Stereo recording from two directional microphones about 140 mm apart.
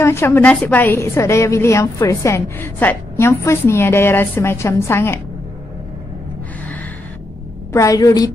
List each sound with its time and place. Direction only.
0.0 s a woman's voice: 20° left (ahead or behind)
7.7 s a woman's voice: 25° left (ahead or behind)